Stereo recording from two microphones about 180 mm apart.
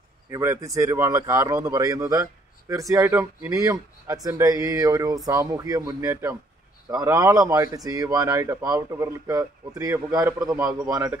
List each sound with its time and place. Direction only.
0.3 s speech: 15° right (ahead or behind)